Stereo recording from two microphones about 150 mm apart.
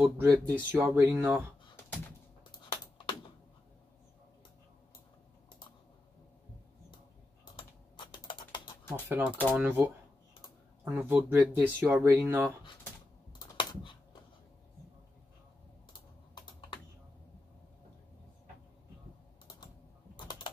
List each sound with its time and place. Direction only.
0.0 s speech: 15° right (ahead or behind)
2.8 s typing: 30° left (ahead or behind)
7.5 s typing: 30° left (ahead or behind)
9.1 s speech: 15° right (ahead or behind)
13.6 s typing: 35° left (ahead or behind)